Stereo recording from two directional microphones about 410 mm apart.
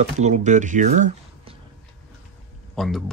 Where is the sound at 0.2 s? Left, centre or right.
Centre.